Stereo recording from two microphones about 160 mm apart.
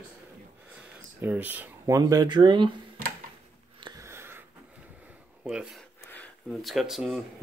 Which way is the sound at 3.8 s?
20° right (ahead or behind).